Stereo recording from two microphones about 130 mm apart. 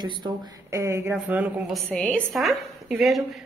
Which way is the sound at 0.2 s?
30° right (ahead or behind).